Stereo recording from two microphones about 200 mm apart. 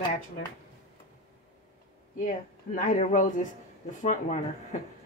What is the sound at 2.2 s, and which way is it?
Speech, 40° left (ahead or behind).